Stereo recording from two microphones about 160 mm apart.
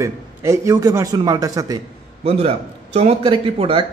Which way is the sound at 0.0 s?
20° right (ahead or behind).